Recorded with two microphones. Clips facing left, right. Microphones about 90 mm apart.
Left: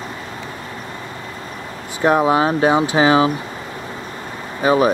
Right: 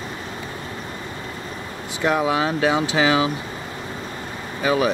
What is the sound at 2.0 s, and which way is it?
Speech, 35° left (ahead or behind).